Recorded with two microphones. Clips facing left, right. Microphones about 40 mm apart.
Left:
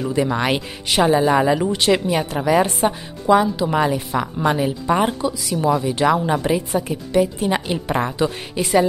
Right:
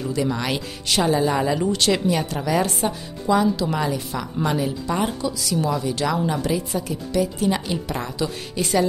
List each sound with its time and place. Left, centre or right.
0.0 s speech: left